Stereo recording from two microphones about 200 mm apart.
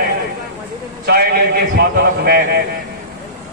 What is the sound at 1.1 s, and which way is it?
A man's voice, 50° right (ahead or behind).